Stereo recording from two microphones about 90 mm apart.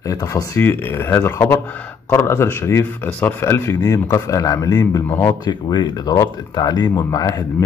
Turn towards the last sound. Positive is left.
turn(degrees=40)  # may be behind; listen again after turning